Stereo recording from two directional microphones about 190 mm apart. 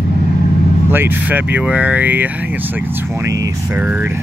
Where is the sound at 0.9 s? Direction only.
10° right (ahead or behind).